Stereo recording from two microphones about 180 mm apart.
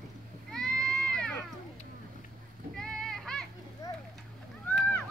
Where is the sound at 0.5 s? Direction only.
5° left (ahead or behind).